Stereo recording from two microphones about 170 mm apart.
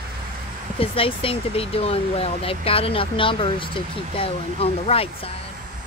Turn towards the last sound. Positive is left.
turn(degrees=35)  # may be behind; listen again after turning